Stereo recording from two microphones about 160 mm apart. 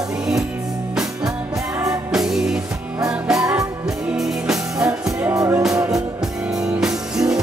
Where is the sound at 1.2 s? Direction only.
20° right (ahead or behind).